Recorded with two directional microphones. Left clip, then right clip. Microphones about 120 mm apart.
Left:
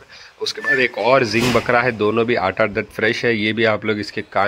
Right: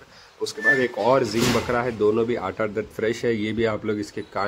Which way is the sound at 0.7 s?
25° left (ahead or behind).